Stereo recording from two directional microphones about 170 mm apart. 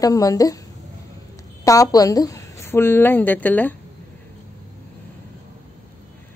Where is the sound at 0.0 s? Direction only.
20° left (ahead or behind).